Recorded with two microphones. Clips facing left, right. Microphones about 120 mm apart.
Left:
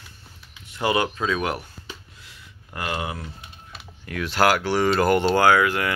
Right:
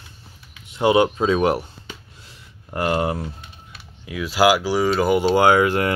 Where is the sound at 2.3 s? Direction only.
35° right (ahead or behind).